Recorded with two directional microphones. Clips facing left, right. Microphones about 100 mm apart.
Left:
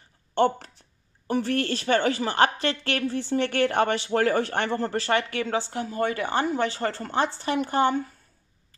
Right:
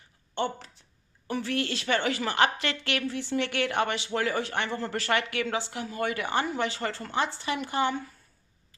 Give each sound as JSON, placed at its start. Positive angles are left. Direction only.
{"t": 0.3, "sound": "a woman's voice", "side_deg": 50}
{"t": 4.9, "sound": "a woman's voice", "side_deg": 30}